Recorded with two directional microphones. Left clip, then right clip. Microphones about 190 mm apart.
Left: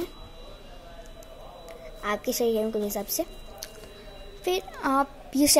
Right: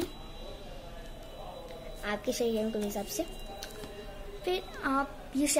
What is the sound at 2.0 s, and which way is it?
A woman's voice, 35° left (ahead or behind).